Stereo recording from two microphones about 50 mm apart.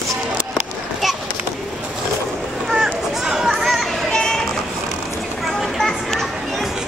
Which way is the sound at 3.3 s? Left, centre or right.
Centre.